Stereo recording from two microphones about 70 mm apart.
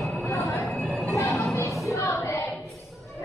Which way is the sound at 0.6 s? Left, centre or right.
Centre.